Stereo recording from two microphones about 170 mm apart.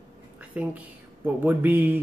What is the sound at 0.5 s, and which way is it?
Speech, 10° right (ahead or behind).